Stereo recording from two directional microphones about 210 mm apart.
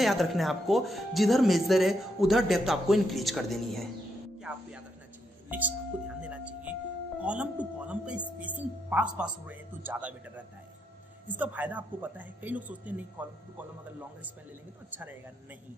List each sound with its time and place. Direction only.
0.0 s speech: centre (ahead or behind)
5.5 s speech: 5° right (ahead or behind)
14.9 s speech: 10° right (ahead or behind)